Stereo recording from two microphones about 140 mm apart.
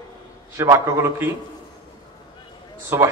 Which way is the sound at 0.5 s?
20° right (ahead or behind).